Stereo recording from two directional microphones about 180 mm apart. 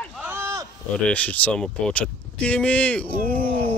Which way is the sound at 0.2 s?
15° right (ahead or behind).